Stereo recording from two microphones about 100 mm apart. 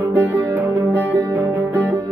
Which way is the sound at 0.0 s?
25° right (ahead or behind).